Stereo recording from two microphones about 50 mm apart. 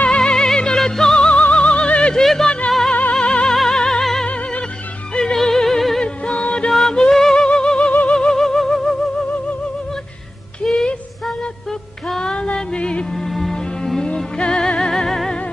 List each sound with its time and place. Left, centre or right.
0.1 s music: centre
2.1 s a sound: centre
2.9 s music: left
4.3 s music: left
5.1 s music: centre
6.0 s music: left
6.7 s music: centre
8.1 s a sound: centre
10.6 s a sound: centre
12.2 s music: centre
13.1 s music: centre